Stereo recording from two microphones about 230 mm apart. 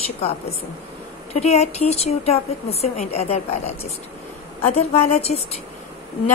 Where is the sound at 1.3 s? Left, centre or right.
Left.